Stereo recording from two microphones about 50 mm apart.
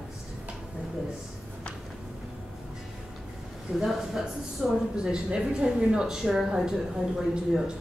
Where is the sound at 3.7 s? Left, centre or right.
Centre.